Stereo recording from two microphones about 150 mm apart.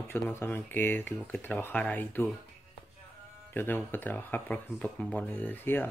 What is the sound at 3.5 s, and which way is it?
Speech, 15° left (ahead or behind).